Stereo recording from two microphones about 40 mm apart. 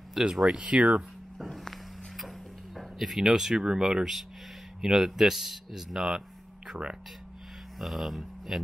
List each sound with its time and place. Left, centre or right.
0.2 s speech: centre
0.6 s speech: right
1.4 s walk: centre
2.1 s a sound: centre
4.8 s speech: centre
6.7 s speech: right
7.8 s speech: centre